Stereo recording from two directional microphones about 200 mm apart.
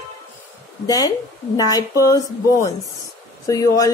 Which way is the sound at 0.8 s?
20° left (ahead or behind).